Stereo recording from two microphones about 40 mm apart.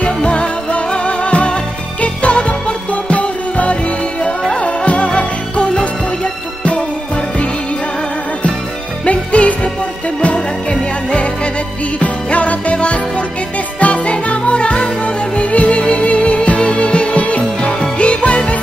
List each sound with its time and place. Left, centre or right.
0.0 s music: left
9.0 s music: left
10.7 s music: left
12.0 s music: left
14.1 s music: left